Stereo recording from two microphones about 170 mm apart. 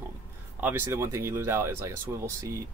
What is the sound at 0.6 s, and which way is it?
Speech, 15° right (ahead or behind).